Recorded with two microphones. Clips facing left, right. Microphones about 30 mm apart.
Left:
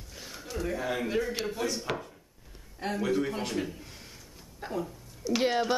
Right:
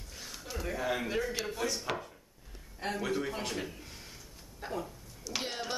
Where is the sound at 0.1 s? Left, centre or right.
Centre.